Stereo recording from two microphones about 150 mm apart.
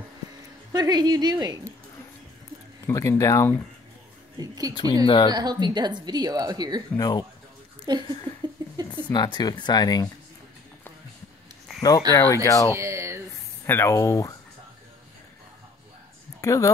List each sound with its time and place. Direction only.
0.7 s a woman's voice: 25° right (ahead or behind)
2.9 s speech: 20° left (ahead or behind)
4.4 s a woman's voice: 25° right (ahead or behind)
5.0 s speech: 30° left (ahead or behind)
5.3 s a woman's voice: 30° right (ahead or behind)
7.0 s speech: 25° left (ahead or behind)
7.9 s a woman's voice: 30° right (ahead or behind)
8.6 s a sound: 25° right (ahead or behind)
9.1 s speech: 30° left (ahead or behind)
12.1 s speech: 20° left (ahead or behind)
12.7 s a sound: 20° right (ahead or behind)
13.7 s speech: 20° left (ahead or behind)
16.3 s speech: 20° left (ahead or behind)